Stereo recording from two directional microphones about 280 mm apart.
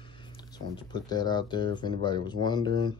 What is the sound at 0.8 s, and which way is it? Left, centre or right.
Speech, centre.